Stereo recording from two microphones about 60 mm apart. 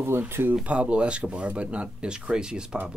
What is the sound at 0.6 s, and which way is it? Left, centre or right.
Speech, right.